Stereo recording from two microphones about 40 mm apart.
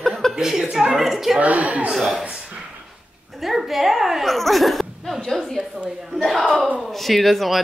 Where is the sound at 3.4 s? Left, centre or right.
Centre.